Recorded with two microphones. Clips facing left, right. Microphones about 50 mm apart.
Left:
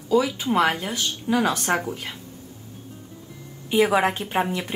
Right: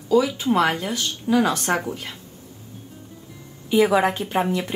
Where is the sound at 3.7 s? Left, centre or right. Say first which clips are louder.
Right 2 dB; centre.